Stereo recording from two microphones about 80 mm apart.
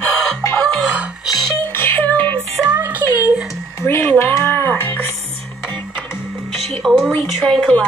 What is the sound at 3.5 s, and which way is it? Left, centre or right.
Speech, left.